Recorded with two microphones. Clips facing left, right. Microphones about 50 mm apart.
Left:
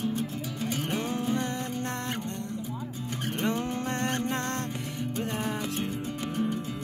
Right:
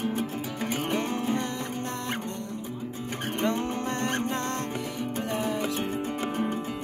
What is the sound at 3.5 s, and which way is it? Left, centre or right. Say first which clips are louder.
Music: right 1 dB; right.